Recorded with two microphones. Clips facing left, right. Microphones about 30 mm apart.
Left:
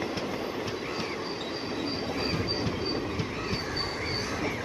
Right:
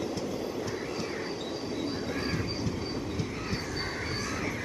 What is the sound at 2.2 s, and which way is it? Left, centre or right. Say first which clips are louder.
Train: left 3 dB; left.